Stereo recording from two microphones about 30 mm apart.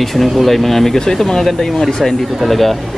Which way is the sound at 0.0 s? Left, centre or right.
Centre.